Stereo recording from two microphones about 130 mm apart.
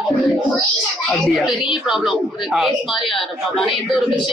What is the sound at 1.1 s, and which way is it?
A woman's voice, centre (ahead or behind).